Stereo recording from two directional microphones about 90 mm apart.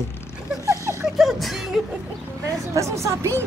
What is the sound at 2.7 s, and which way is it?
Speech, 35° right (ahead or behind).